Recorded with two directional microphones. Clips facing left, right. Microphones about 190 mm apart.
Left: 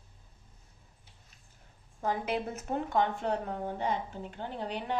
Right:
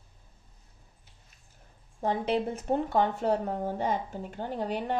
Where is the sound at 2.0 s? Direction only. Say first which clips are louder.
Right 4 dB; 30° right (ahead or behind).